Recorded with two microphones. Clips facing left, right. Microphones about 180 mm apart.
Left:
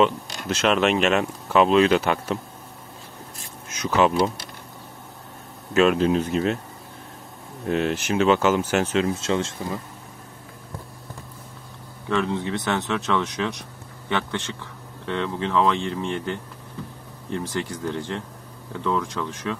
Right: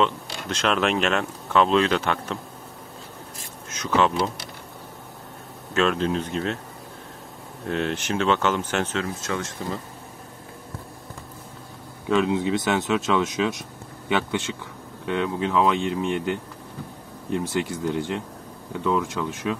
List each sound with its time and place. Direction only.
0.0 s speech: 5° left (ahead or behind)
3.7 s speech: 10° left (ahead or behind)
5.8 s speech: 10° left (ahead or behind)
7.6 s speech: 5° left (ahead or behind)
9.2 s speech: 25° left (ahead or behind)
12.1 s speech: 5° right (ahead or behind)